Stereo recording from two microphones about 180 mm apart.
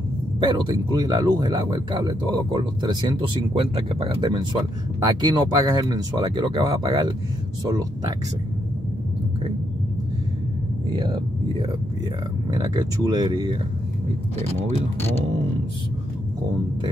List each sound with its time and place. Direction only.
0.4 s speech: 25° right (ahead or behind)
12.5 s speech: 20° right (ahead or behind)
15.0 s speech: 10° left (ahead or behind)